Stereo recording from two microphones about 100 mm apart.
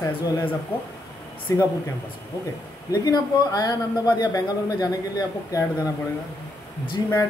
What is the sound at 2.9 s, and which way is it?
A man's voice, 40° left (ahead or behind).